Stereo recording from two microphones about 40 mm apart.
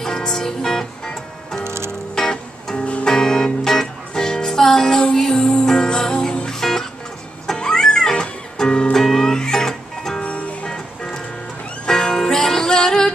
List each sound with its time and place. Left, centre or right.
0.0 s music: centre
2.8 s music: left
3.1 s music: centre
11.9 s music: centre